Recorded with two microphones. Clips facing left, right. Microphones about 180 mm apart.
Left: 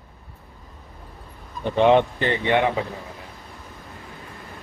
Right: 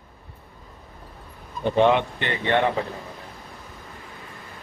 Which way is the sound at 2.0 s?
35° left (ahead or behind).